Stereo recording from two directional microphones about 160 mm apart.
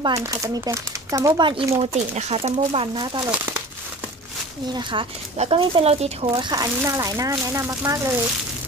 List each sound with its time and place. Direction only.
0.0 s speech: 20° right (ahead or behind); by 2.5 s 45° right (ahead or behind)
2.5 s speech: 35° right (ahead or behind)
3.3 s speech: 15° right (ahead or behind)
4.9 s speech: 30° right (ahead or behind)